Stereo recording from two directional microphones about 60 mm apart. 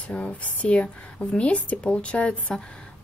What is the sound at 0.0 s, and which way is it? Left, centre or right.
A woman's voice, centre.